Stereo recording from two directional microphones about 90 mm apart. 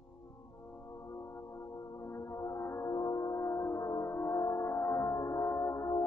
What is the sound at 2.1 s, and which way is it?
Music, 35° left (ahead or behind).